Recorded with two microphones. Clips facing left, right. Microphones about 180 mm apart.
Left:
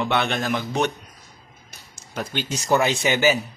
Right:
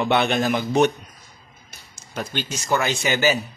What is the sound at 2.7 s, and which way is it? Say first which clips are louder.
Speech: left 2 dB; 20° left (ahead or behind).